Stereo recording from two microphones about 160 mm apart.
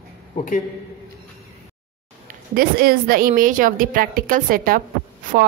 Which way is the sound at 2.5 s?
65° right (ahead or behind).